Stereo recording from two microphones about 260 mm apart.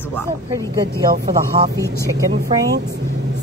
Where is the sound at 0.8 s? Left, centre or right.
Right.